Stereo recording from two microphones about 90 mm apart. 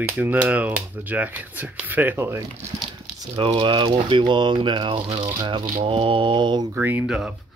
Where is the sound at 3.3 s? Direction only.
65° right (ahead or behind).